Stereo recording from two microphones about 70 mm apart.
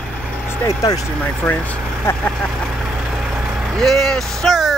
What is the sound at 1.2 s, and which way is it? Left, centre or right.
Speech, left.